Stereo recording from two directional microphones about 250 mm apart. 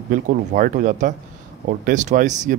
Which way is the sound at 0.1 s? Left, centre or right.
Right.